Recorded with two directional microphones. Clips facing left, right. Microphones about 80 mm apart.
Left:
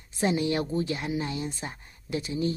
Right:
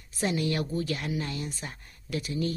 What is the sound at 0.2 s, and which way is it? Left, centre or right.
Speech, left.